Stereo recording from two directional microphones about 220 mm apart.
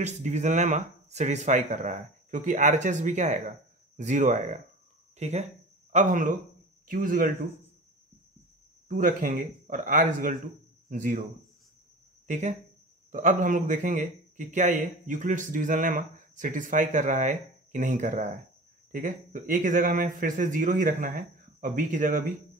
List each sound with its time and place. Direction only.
0.0 s a man's voice: 30° right (ahead or behind)
8.8 s a man's voice: 35° right (ahead or behind)
12.3 s a man's voice: 30° right (ahead or behind)